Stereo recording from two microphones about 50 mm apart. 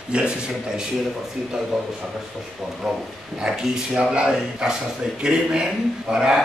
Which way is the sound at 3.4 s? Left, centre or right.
Centre.